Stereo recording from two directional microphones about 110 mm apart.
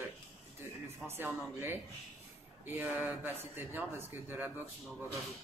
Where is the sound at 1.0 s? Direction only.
20° right (ahead or behind).